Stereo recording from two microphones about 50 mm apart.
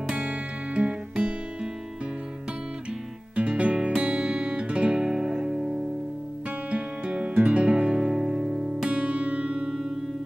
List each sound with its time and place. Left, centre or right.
0.1 s music: right
3.3 s music: right
6.7 s music: right